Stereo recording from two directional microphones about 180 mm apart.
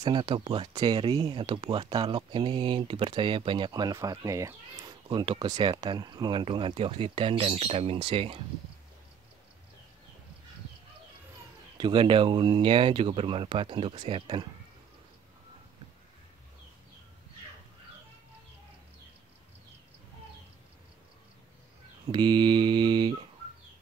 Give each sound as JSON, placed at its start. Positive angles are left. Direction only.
{"t": 0.0, "sound": "speech", "side_deg": -25}
{"t": 11.8, "sound": "speech", "side_deg": -30}
{"t": 22.1, "sound": "speech", "side_deg": -25}